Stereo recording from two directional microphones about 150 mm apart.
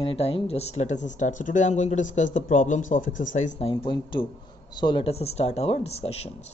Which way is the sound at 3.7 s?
35° left (ahead or behind).